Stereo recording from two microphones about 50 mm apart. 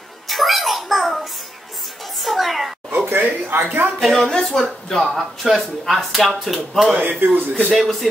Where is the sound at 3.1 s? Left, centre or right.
Right.